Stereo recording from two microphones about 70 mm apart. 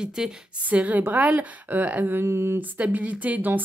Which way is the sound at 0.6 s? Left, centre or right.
Right.